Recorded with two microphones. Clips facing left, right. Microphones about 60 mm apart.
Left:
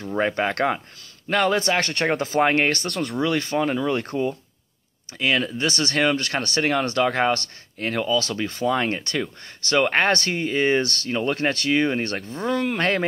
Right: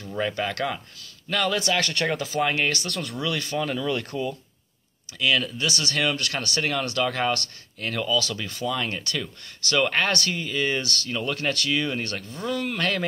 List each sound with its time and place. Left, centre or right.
0.0 s speech: left